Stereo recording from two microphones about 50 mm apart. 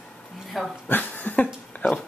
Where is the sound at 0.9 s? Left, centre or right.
Left.